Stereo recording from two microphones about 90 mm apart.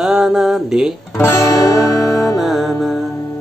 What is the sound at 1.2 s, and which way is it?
Music, 30° left (ahead or behind).